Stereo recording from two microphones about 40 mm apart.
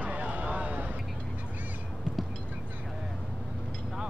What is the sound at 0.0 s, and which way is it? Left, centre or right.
Vehicle, right.